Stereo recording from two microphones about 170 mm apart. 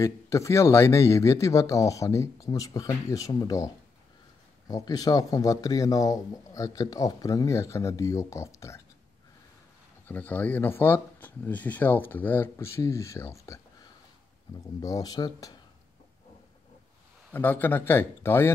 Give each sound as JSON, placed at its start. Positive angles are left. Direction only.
{"t": 0.0, "sound": "speech", "side_deg": 15}
{"t": 10.0, "sound": "speech", "side_deg": 10}
{"t": 17.3, "sound": "speech", "side_deg": 10}